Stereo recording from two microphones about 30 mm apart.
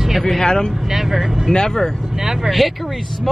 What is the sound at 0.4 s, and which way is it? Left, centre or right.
Speech, left.